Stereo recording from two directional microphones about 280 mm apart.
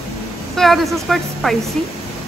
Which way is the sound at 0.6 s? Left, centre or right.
Centre.